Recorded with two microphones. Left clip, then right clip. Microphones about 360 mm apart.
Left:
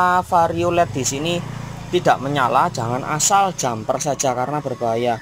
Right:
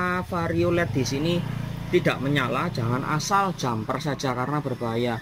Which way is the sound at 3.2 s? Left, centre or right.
Centre.